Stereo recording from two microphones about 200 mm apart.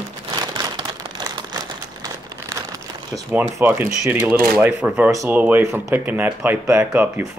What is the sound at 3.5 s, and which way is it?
Speech, 15° right (ahead or behind).